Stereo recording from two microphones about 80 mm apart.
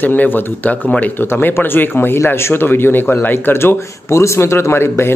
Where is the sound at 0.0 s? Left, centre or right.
Left.